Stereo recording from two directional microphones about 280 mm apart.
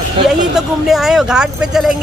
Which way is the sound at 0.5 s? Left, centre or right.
Centre.